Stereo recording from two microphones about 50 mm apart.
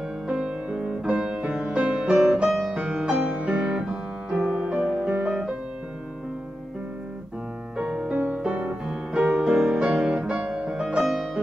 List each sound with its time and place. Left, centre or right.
0.3 s music: centre
7.7 s music: right
8.8 s music: centre
11.0 s music: centre